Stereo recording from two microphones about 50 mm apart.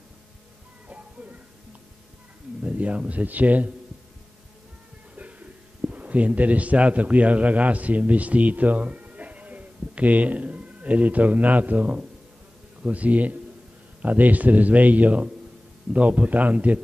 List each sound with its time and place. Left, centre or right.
2.6 s speech: right
5.1 s a man's voice: right